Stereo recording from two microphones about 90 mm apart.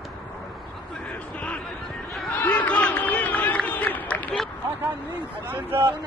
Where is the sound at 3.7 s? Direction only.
20° left (ahead or behind).